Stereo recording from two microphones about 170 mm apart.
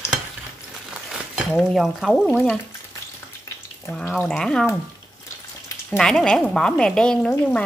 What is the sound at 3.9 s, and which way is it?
Speech, 5° left (ahead or behind).